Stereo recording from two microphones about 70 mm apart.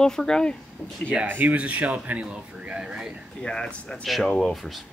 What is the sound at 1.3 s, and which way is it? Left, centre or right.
Speech, right.